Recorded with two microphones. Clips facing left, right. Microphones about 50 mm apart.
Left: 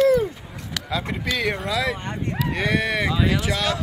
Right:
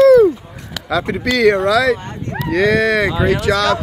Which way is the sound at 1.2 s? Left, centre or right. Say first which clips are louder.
Right 14 dB; right.